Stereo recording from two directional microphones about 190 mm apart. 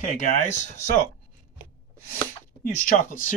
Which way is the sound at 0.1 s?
40° left (ahead or behind).